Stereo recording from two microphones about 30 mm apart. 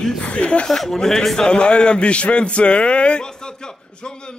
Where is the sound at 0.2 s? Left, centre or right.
Left.